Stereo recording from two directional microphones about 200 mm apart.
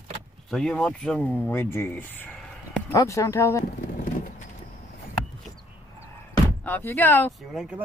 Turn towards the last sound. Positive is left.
turn(degrees=0)  # may be behind; listen again after turning